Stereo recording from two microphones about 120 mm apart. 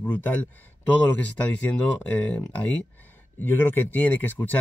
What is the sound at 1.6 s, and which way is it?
Speech, 15° left (ahead or behind).